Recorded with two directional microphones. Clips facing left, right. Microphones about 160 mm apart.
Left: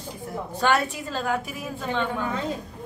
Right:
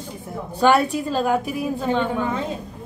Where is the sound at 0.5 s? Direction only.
10° right (ahead or behind).